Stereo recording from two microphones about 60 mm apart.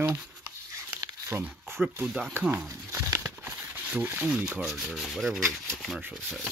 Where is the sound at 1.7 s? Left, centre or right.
Right.